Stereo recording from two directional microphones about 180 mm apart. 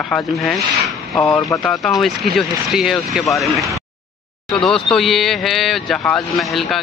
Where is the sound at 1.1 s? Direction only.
15° left (ahead or behind).